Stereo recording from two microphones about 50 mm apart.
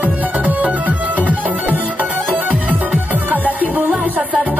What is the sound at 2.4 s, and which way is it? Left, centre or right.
Music, right.